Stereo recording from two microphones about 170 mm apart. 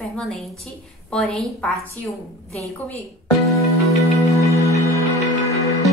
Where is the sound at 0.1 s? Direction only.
5° left (ahead or behind).